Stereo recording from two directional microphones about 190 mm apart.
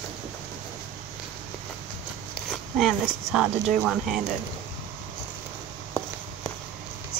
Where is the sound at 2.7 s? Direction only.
Centre (ahead or behind).